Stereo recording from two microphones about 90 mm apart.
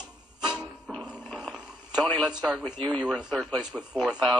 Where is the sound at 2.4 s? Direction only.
5° right (ahead or behind).